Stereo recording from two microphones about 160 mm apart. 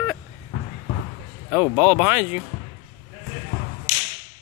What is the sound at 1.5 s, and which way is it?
Speech, 10° right (ahead or behind).